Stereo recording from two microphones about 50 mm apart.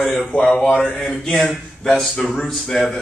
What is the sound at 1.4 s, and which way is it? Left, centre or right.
Speech, centre.